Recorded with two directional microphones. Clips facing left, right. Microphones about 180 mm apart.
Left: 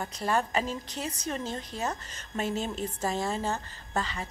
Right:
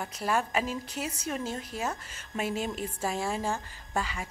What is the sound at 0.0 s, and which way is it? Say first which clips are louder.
A woman's voice: left 1 dB; 5° right (ahead or behind).